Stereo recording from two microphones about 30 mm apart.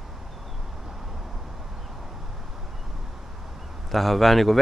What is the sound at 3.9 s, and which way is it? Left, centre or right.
Speech, centre.